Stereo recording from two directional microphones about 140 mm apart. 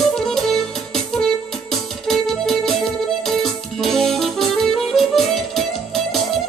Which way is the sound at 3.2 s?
Centre (ahead or behind).